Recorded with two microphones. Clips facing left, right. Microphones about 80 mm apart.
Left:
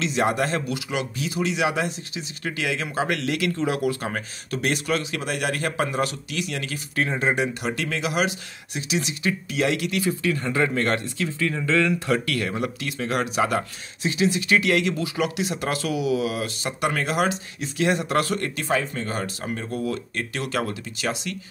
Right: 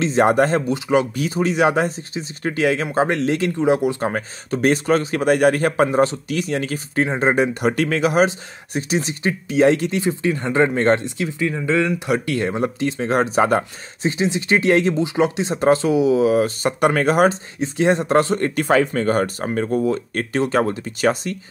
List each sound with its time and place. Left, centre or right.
0.0 s speech: right
4.1 s speech: right
18.7 s speech: right
19.0 s speech: right
19.7 s speech: right
20.2 s speech: right